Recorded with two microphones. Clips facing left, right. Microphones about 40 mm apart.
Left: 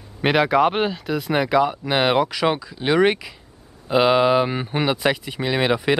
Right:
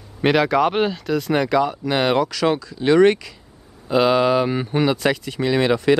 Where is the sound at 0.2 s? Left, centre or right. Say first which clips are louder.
Even; centre.